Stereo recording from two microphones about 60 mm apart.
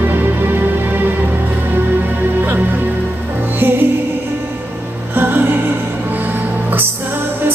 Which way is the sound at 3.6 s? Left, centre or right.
Right.